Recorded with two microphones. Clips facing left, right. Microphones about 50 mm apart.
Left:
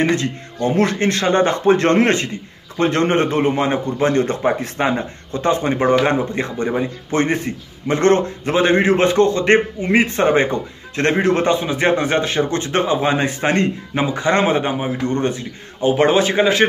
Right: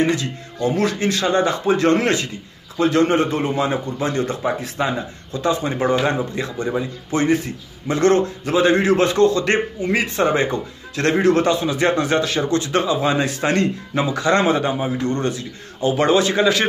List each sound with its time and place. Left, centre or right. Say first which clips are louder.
0.0 s a man's voice: left 1 dB; left